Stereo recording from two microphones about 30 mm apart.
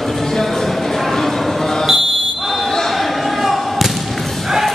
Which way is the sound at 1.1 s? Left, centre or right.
Centre.